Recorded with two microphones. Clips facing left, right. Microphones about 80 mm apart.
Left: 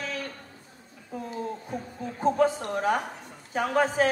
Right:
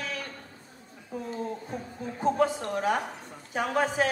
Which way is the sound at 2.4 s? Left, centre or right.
Left.